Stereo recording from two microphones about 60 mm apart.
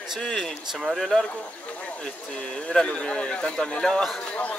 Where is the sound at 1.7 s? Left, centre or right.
Centre.